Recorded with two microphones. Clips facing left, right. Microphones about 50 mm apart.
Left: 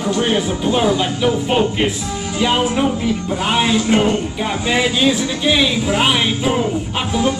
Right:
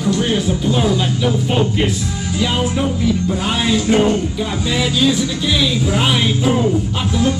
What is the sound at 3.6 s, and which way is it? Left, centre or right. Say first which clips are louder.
Music: right 1 dB; left.